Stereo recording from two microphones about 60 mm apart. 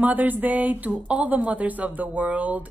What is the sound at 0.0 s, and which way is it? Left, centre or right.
Speech, right.